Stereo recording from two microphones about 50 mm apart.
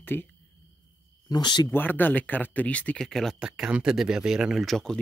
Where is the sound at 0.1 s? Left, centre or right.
Left.